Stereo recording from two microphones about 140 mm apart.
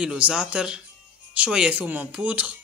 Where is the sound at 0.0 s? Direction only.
5° right (ahead or behind).